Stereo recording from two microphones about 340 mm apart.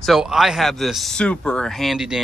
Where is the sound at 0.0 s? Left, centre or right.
Centre.